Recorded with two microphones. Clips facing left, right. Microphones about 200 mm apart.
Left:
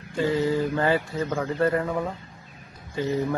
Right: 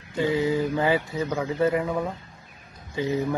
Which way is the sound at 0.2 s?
20° right (ahead or behind).